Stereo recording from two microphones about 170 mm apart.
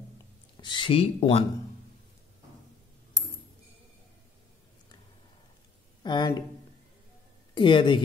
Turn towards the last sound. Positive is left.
turn(degrees=30)  # may be behind; listen again after turning